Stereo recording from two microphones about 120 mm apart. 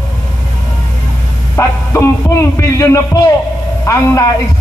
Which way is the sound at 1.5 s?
25° left (ahead or behind).